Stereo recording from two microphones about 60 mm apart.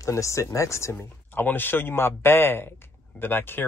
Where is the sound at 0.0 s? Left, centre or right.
Left.